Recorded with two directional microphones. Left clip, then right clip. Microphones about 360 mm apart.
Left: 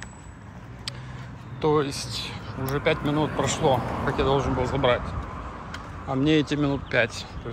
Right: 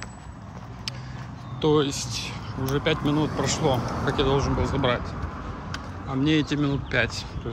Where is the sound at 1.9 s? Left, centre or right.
Centre.